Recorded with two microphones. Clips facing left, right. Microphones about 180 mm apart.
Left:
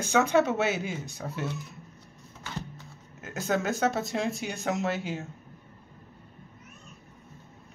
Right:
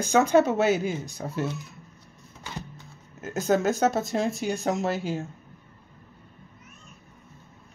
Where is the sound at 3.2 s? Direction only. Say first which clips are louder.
Right 5 dB; 40° right (ahead or behind).